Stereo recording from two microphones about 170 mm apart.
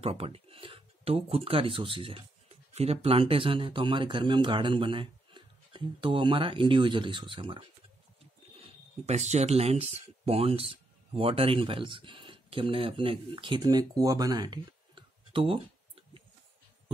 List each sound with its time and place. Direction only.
0.0 s speech: 35° right (ahead or behind)
8.5 s speech: 40° right (ahead or behind)